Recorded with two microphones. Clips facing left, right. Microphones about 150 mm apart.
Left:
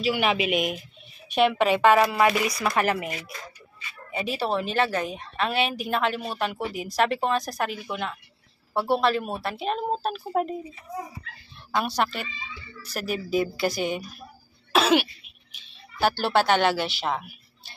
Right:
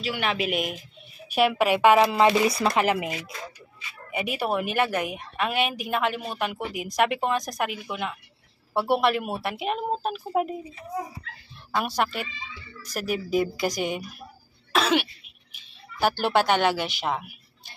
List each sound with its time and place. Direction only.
0.0 s a woman's voice: 10° left (ahead or behind); by 8.2 s 5° right (ahead or behind)
8.7 s a man's voice: 20° right (ahead or behind)
11.7 s a woman's voice: 10° right (ahead or behind)
14.7 s cough: 5° left (ahead or behind)
15.5 s speech: 10° right (ahead or behind)